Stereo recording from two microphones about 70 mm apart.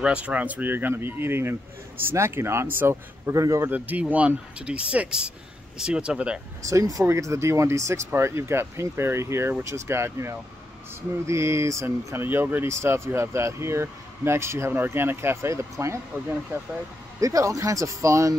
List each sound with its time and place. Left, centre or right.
0.0 s speech: centre; by 3.7 s right
3.7 s speech: right
6.7 s speech: right
7.1 s speech: right
16.5 s speech: right
17.2 s speech: right